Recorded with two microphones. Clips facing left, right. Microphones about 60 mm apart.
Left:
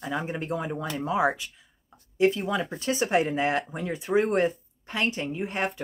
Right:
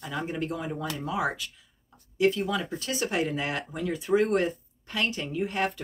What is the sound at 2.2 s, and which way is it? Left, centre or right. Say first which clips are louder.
Speech: left 1 dB; left.